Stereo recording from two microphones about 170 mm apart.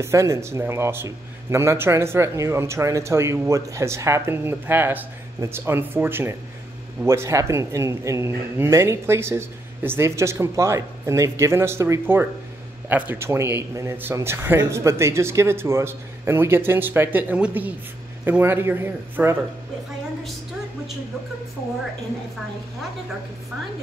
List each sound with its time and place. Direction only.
0.0 s a man's voice: 15° right (ahead or behind)